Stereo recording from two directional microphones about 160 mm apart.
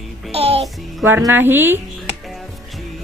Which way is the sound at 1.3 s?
15° right (ahead or behind).